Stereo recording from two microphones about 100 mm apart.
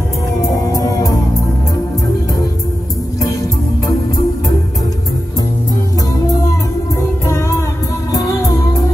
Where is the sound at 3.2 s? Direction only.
35° left (ahead or behind).